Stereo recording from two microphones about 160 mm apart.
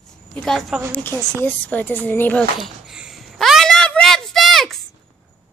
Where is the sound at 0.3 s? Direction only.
5° left (ahead or behind).